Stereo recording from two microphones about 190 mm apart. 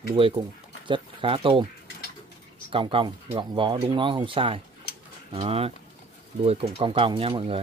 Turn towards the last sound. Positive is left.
turn(degrees=-30)  # may be behind; listen again after turning